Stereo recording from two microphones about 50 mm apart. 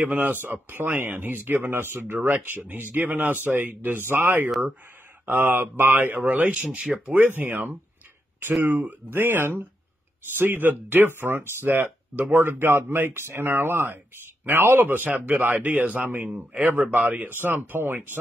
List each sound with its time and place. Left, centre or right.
0.1 s a man's voice: right
2.1 s a man's voice: right
7.2 s speech: right
9.1 s a man's voice: right
16.8 s a man's voice: right